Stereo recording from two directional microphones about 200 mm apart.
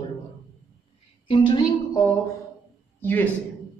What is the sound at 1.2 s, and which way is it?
Speech, 25° left (ahead or behind).